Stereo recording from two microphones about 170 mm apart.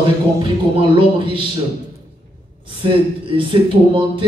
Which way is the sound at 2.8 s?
30° right (ahead or behind).